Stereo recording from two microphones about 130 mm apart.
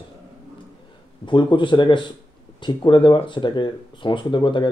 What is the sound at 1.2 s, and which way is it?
Speech, 40° left (ahead or behind).